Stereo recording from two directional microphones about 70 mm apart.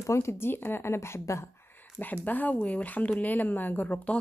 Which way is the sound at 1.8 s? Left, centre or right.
Left.